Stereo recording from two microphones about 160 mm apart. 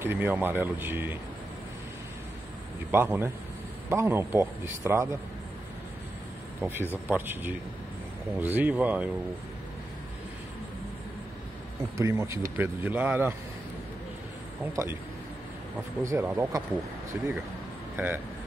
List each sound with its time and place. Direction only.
0.0 s speech: 15° right (ahead or behind)
2.9 s speech: 15° right (ahead or behind)
6.6 s speech: 10° right (ahead or behind)
12.0 s speech: 20° right (ahead or behind)
14.8 s speech: 20° right (ahead or behind)
16.0 s speech: 20° right (ahead or behind)